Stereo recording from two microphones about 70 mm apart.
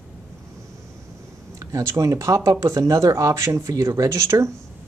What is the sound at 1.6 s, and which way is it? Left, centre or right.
Speech, right.